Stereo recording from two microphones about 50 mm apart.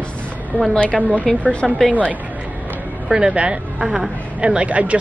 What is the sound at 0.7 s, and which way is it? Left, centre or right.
Speech, left.